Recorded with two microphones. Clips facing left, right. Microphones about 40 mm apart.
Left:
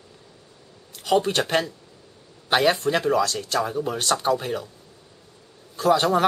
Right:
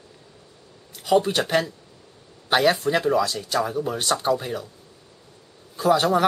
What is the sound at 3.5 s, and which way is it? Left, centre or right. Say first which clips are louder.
Speech: right 1 dB; centre.